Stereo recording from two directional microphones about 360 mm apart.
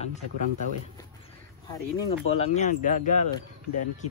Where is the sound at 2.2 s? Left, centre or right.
Centre.